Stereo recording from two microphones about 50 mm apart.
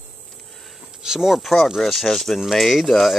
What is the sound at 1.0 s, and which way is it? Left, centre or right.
Speech, centre.